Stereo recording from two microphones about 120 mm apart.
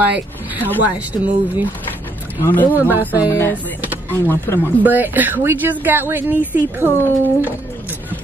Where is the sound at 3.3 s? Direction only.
15° left (ahead or behind).